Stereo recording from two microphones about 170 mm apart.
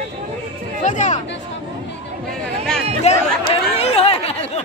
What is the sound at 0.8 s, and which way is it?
Speech, 45° left (ahead or behind).